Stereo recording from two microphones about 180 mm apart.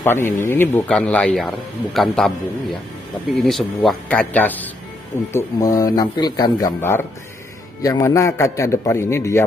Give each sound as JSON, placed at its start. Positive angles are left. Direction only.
{"t": 0.0, "sound": "a man's voice", "side_deg": 15}